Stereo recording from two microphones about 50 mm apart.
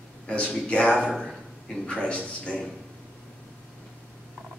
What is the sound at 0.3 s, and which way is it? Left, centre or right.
Speech, left.